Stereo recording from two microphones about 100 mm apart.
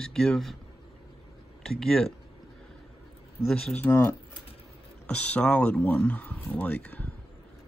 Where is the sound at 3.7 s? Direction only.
20° left (ahead or behind).